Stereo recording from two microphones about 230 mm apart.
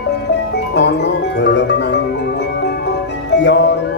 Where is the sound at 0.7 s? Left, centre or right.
Left.